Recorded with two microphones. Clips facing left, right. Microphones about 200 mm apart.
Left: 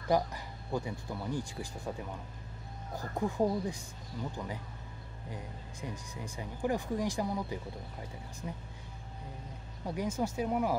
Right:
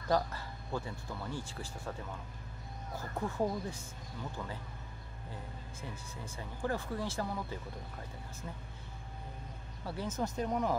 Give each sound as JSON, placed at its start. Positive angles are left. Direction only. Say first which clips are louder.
{"t": 0.1, "sound": "speech", "louder": "left 2 dB", "side_deg": 15}
{"t": 9.8, "sound": "speech", "louder": "left 3 dB", "side_deg": 15}